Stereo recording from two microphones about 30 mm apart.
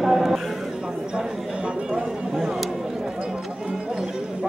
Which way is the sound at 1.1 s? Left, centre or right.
Right.